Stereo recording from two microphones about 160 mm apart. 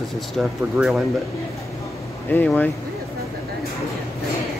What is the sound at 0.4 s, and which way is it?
Speech, 5° right (ahead or behind).